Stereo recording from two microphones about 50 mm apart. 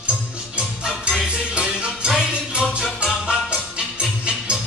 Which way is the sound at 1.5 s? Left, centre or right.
Centre.